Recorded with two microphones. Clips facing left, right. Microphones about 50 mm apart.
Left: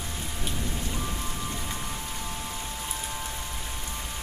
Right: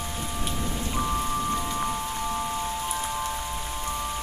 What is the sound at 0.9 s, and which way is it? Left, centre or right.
Rain, right.